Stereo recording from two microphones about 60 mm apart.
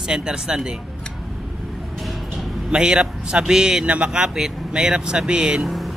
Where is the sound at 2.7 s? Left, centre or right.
Centre.